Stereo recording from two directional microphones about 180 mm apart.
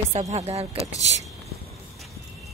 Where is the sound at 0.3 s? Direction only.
35° right (ahead or behind).